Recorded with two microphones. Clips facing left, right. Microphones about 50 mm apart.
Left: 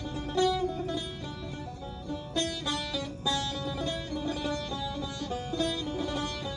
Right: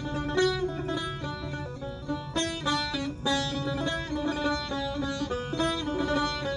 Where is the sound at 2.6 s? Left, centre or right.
Right.